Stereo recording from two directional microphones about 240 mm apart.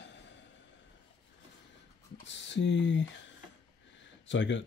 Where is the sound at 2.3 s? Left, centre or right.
Left.